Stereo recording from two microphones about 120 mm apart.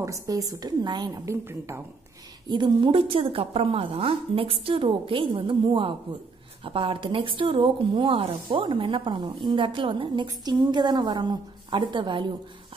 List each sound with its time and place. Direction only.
0.0 s a woman's voice: 30° right (ahead or behind)
2.5 s a woman's voice: 40° right (ahead or behind)